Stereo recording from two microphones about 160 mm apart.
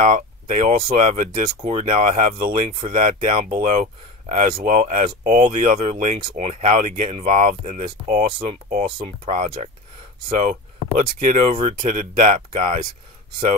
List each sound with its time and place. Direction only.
0.0 s speech: 55° right (ahead or behind)
1.6 s speech: 40° right (ahead or behind)
1.9 s speech: 55° right (ahead or behind)
8.9 s speech: 40° right (ahead or behind)
11.8 s speech: 55° right (ahead or behind)